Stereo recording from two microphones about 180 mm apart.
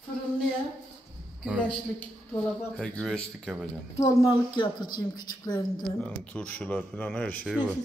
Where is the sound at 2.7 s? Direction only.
5° left (ahead or behind).